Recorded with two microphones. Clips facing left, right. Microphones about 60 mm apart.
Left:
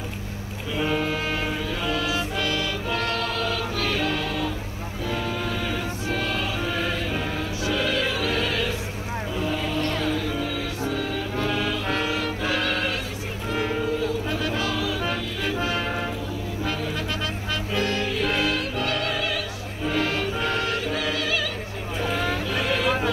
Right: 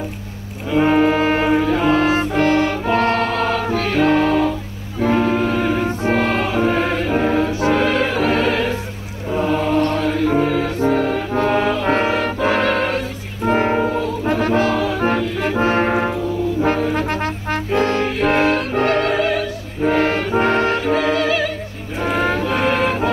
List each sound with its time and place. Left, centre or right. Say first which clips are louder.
0.7 s music: right 11 dB; right
22.0 s vehicle: right 8 dB; right